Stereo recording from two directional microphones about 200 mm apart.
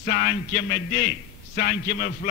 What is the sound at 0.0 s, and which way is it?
A man's voice, 45° left (ahead or behind).